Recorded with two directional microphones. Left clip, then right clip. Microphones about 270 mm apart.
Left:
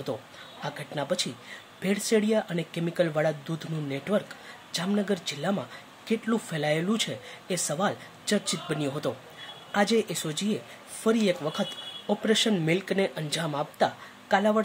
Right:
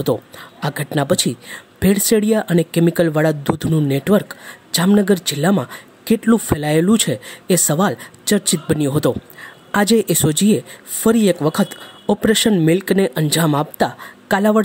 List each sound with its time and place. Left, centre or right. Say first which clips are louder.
0.6 s speech: right 12 dB; right